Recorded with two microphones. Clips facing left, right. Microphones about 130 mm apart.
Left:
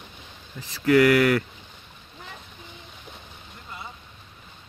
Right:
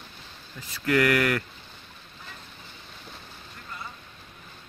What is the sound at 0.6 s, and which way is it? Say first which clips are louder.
Speech: left 3 dB; 15° left (ahead or behind).